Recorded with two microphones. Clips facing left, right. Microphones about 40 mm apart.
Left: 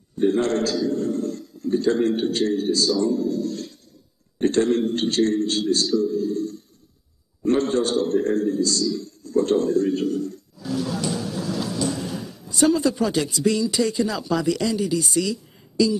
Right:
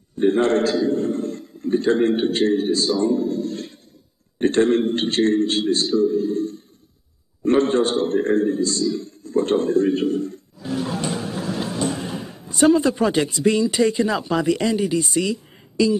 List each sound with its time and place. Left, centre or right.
0.2 s a man's voice: right